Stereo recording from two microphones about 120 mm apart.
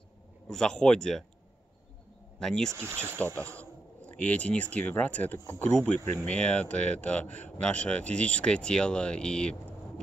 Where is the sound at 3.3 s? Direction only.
10° left (ahead or behind).